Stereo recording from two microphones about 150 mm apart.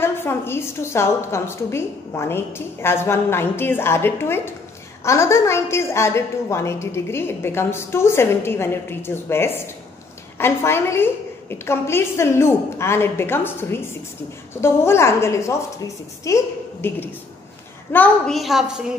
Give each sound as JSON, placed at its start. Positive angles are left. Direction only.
{"t": 0.0, "sound": "a woman's voice", "side_deg": 15}